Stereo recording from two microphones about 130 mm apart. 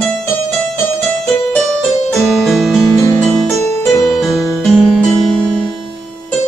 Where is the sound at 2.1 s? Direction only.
Centre (ahead or behind).